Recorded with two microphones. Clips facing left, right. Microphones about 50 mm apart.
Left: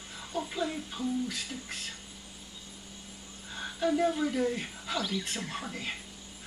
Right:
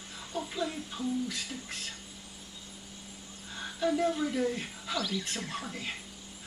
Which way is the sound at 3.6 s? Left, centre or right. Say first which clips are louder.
Left 1 dB; centre.